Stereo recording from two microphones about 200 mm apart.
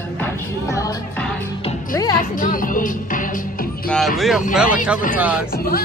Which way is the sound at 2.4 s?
45° left (ahead or behind).